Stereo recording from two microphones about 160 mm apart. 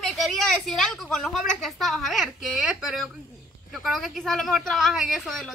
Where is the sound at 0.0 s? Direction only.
Centre (ahead or behind).